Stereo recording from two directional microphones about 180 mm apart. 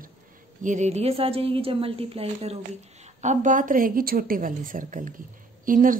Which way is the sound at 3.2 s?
45° right (ahead or behind).